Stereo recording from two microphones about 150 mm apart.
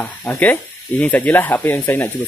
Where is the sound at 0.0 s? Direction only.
10° left (ahead or behind).